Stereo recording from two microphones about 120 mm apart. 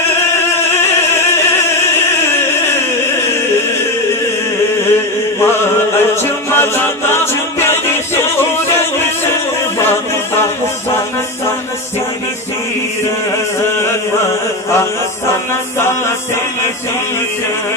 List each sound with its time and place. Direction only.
0.7 s opera: 20° left (ahead or behind)
5.4 s music: 20° left (ahead or behind)